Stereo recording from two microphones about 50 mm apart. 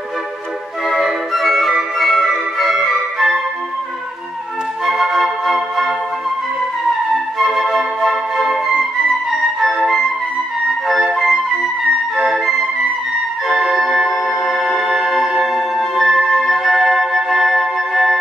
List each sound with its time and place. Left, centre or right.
1.0 s music: centre
4.8 s music: centre
7.5 s flute: centre
13.5 s music: centre